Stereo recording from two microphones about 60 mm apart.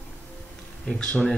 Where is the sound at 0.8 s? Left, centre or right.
Centre.